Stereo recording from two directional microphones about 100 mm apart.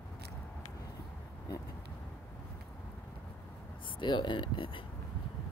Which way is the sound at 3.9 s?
50° left (ahead or behind).